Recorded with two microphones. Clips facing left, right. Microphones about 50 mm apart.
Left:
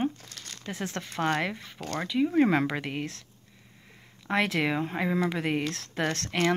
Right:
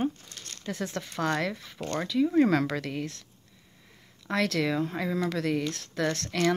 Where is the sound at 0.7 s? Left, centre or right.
Left.